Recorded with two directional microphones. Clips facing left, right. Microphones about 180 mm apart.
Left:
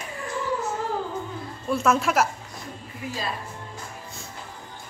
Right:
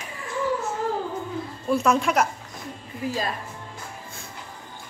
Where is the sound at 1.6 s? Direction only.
Centre (ahead or behind).